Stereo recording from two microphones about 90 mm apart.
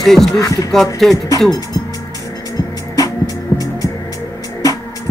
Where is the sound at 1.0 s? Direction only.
5° left (ahead or behind).